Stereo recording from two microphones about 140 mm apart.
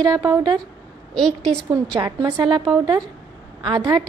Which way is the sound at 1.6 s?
30° right (ahead or behind).